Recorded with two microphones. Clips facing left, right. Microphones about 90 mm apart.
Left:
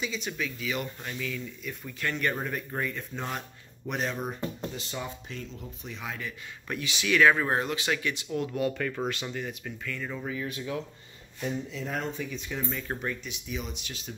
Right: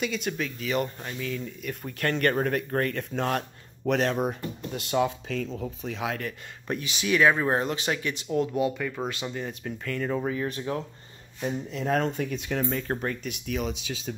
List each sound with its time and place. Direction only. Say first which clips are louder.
0.0 s speech: right 4 dB; 55° right (ahead or behind); by 1.4 s 40° right (ahead or behind)
1.6 s speech: right 4 dB; 60° right (ahead or behind); by 4.4 s 85° right
4.7 s speech: right 11 dB; 65° right (ahead or behind); by 6.1 s 90° right
6.7 s speech: right 2 dB; 25° right (ahead or behind)
9.1 s speech: right 2 dB; 20° right (ahead or behind)
9.5 s speech: right 4 dB; 35° right (ahead or behind)
11.7 s speech: right 7 dB; 75° right (ahead or behind)
12.6 s speech: right 4 dB; 45° right (ahead or behind); by 13.7 s 70° right (ahead or behind)